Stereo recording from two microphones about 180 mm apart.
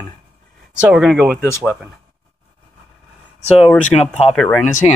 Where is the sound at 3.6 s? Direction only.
5° left (ahead or behind).